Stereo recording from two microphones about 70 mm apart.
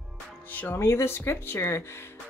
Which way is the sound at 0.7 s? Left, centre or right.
Left.